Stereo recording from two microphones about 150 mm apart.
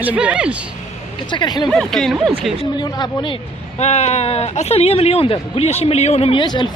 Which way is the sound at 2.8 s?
30° left (ahead or behind).